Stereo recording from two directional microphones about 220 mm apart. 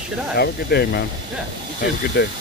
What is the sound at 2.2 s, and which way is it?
Speech, 45° left (ahead or behind).